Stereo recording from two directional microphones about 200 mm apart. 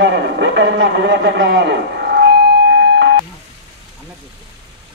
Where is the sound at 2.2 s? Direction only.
60° right (ahead or behind).